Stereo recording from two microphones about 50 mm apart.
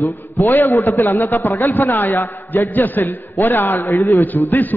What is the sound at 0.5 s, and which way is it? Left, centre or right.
A man's voice, left.